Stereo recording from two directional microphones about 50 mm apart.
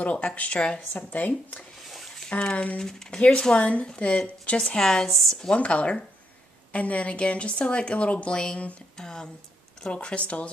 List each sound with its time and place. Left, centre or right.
0.0 s speech: left
1.1 s speech: left
1.9 s a sound: centre
2.2 s speech: centre
2.5 s speech: left
2.8 s speech: centre
5.5 s speech: left
8.9 s speech: centre